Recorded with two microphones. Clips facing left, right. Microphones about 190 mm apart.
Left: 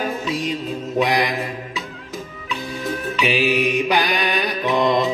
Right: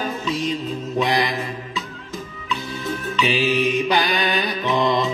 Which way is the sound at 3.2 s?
15° left (ahead or behind).